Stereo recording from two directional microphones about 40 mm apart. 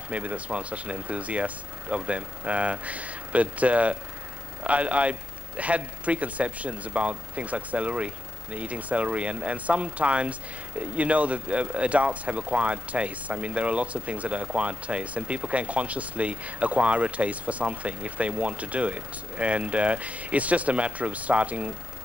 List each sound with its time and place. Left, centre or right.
0.1 s speech: right